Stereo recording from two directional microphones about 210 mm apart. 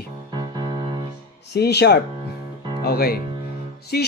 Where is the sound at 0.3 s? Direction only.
20° right (ahead or behind).